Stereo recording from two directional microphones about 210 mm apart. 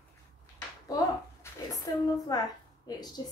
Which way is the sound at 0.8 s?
15° left (ahead or behind).